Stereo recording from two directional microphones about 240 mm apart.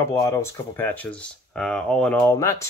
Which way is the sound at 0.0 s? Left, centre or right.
Centre.